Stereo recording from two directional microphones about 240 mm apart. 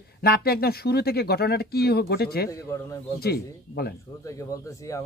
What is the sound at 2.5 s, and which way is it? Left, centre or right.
Speech, centre.